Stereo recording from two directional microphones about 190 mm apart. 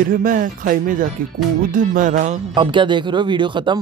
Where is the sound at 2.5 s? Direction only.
25° right (ahead or behind).